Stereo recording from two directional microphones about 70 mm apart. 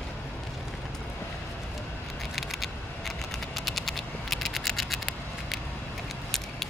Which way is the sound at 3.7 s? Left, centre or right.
Centre.